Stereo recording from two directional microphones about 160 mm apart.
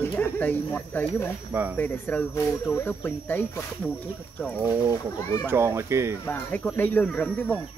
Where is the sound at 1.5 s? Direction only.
15° right (ahead or behind).